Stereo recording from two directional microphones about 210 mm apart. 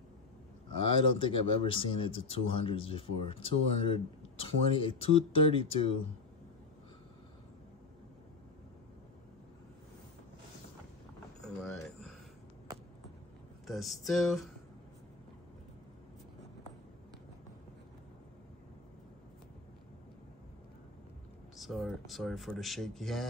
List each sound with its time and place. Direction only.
1.1 s speech: 25° left (ahead or behind)
11.4 s a sound: centre (ahead or behind)
13.7 s speech: centre (ahead or behind)
21.5 s speech: centre (ahead or behind)